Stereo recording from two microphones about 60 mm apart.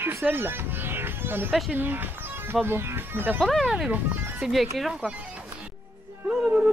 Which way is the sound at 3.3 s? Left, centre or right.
Centre.